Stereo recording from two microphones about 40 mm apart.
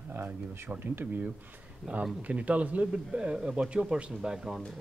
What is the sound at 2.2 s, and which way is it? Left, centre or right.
A man's voice, right.